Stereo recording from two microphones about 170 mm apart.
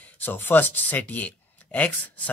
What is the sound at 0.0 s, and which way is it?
Speech, 10° left (ahead or behind).